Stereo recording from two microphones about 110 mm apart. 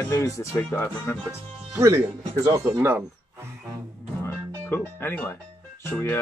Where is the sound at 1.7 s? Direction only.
25° right (ahead or behind).